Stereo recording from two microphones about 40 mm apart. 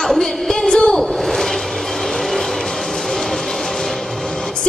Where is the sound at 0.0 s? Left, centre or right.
Centre.